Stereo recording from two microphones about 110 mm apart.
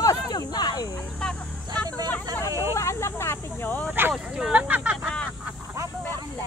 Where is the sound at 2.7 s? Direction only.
25° left (ahead or behind).